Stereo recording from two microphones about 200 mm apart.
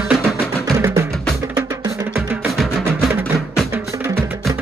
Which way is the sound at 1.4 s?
15° right (ahead or behind).